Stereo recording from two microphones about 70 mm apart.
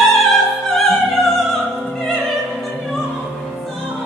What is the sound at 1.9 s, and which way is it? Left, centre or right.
Music, centre.